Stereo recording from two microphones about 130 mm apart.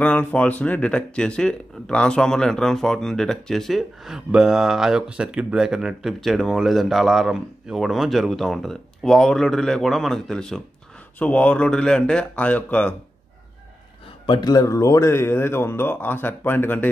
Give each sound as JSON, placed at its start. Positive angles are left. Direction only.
{"t": 0.0, "sound": "a man's voice", "side_deg": 10}
{"t": 14.2, "sound": "a man's voice", "side_deg": 35}